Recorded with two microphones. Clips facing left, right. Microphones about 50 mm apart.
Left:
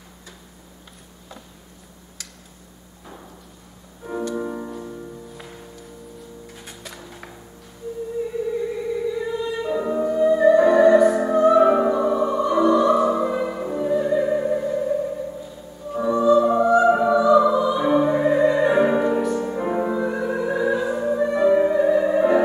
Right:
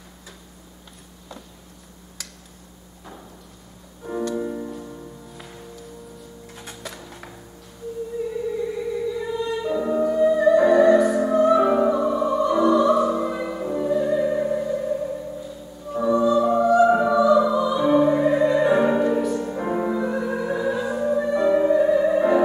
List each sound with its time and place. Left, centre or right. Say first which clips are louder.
2.2 s a sound: right 1 dB; centre
4.0 s music: right 1 dB; centre
4.4 s music: even; centre
5.3 s music: left 2 dB; centre
6.6 s music: right 2 dB; centre
9.1 s music: even; centre